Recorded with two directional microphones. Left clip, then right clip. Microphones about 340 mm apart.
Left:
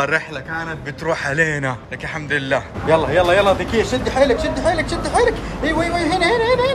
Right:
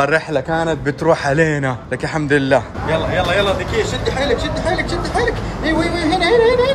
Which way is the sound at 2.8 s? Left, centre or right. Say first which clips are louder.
Left 3 dB; left.